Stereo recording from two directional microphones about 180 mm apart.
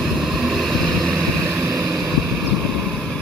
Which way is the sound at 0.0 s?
Centre (ahead or behind).